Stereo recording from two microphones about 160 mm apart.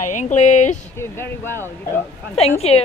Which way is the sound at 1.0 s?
15° left (ahead or behind).